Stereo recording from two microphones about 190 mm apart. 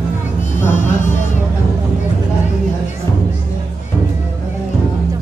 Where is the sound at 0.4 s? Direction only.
40° left (ahead or behind).